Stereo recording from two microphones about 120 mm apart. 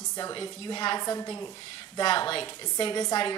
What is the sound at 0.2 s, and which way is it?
A woman's voice, 35° left (ahead or behind).